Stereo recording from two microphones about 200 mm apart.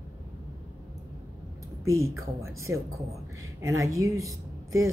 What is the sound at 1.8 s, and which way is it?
A woman's voice, 15° right (ahead or behind).